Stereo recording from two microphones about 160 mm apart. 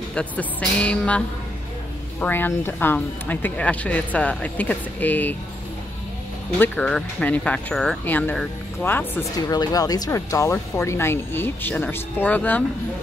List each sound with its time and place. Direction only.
0.1 s speech: 5° left (ahead or behind)
6.6 s speech: 10° left (ahead or behind)
9.5 s speech: 25° left (ahead or behind)